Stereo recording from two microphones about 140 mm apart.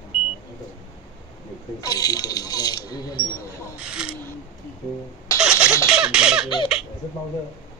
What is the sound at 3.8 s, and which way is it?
Speech, 5° right (ahead or behind).